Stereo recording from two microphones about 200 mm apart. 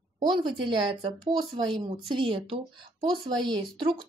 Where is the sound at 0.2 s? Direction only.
25° right (ahead or behind).